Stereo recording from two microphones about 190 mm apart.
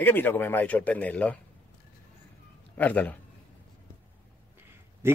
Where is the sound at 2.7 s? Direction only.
10° left (ahead or behind).